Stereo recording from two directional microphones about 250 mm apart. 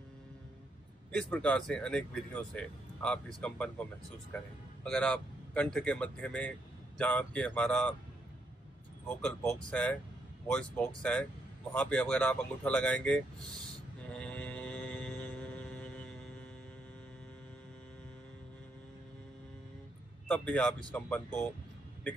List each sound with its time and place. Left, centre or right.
1.1 s speech: centre
4.8 s speech: centre
9.2 s speech: centre
14.0 s mantra: centre
20.2 s speech: centre